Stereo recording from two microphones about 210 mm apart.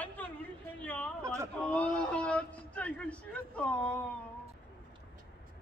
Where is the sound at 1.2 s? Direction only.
15° right (ahead or behind).